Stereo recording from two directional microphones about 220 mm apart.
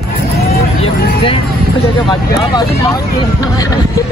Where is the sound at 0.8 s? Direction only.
25° left (ahead or behind).